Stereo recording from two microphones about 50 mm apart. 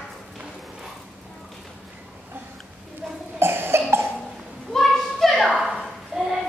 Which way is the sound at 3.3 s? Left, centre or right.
Right.